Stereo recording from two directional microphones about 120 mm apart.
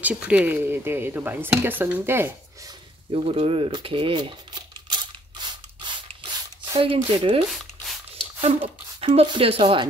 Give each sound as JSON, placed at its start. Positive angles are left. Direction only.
{"t": 0.0, "sound": "speech", "side_deg": -10}
{"t": 3.1, "sound": "speech", "side_deg": -55}
{"t": 3.7, "sound": "coin", "side_deg": -45}
{"t": 6.6, "sound": "speech", "side_deg": -50}
{"t": 8.5, "sound": "speech", "side_deg": -50}